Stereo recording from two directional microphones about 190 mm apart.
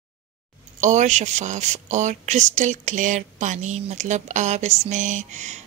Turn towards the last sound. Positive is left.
turn(degrees=-40)  # may be behind; listen again after turning